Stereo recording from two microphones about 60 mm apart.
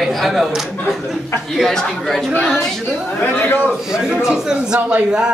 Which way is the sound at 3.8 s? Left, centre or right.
Centre.